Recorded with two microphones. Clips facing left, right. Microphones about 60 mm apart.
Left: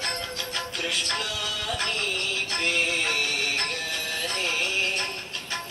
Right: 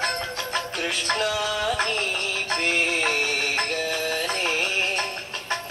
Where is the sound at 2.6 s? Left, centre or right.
Right.